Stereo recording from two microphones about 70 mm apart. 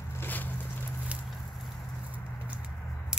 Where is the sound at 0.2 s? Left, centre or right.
Left.